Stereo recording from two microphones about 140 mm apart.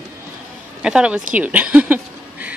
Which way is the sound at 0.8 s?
5° right (ahead or behind).